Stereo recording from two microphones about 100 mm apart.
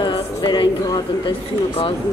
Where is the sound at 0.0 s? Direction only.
50° left (ahead or behind).